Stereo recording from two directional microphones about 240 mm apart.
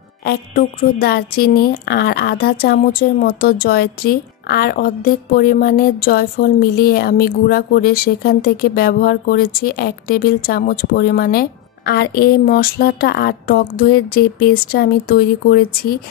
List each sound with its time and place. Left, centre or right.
0.2 s speech: left